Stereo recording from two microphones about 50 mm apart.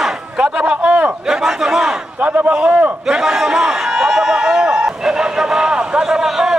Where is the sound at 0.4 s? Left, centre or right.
Right.